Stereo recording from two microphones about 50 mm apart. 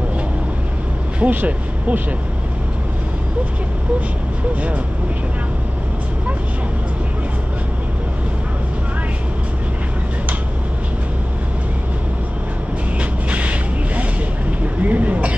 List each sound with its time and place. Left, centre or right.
1.2 s speech: right
13.3 s a sound: right
14.8 s speech: right